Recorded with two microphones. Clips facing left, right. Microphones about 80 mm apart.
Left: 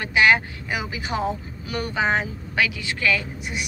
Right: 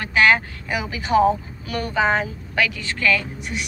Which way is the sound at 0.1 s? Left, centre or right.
Centre.